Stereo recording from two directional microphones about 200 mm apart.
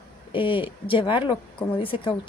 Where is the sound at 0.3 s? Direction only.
25° left (ahead or behind).